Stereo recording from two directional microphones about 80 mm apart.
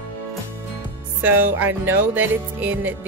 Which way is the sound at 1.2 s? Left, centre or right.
Right.